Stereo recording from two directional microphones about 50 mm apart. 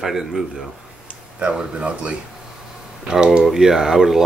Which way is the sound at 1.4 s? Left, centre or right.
Right.